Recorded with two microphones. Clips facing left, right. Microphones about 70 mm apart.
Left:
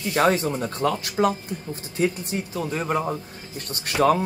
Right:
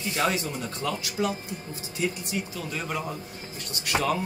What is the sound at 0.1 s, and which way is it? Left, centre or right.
A man's voice, left.